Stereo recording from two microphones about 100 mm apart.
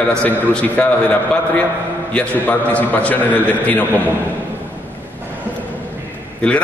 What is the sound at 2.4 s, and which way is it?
A man's voice, 15° left (ahead or behind).